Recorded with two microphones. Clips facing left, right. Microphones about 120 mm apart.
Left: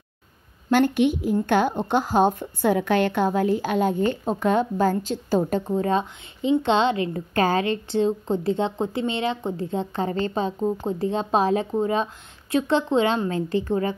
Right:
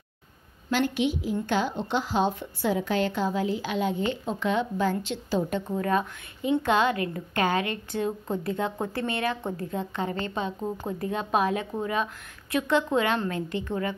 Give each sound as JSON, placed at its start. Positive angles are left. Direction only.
{"t": 0.7, "sound": "a woman's voice", "side_deg": 55}
{"t": 5.8, "sound": "a woman's voice", "side_deg": 25}